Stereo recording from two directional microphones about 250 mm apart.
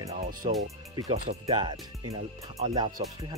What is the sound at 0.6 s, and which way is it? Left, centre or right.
Speech, centre.